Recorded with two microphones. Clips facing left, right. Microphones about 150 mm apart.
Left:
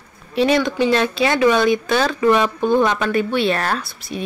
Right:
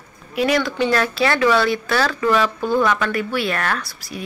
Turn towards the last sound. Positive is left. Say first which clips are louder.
# left 3 dB
turn(degrees=25)  # may be behind; listen again after turning